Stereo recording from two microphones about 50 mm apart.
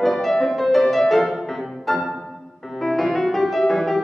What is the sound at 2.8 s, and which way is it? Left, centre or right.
Music, centre.